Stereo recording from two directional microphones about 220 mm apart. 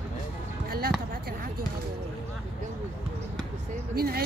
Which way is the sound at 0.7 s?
45° right (ahead or behind).